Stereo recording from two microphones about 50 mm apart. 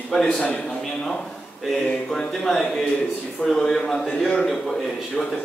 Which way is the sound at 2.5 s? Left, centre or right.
Centre.